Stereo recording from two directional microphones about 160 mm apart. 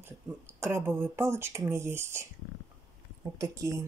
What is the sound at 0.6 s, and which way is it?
Speech, 15° right (ahead or behind).